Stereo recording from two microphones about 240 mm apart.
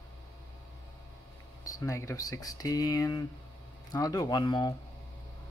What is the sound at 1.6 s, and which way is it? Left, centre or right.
Speech, centre.